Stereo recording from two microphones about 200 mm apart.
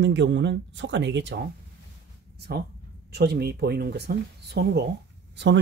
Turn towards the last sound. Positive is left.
turn(degrees=-60)  # may be behind; listen again after turning